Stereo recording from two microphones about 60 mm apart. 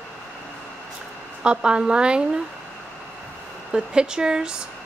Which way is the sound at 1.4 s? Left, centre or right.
Centre.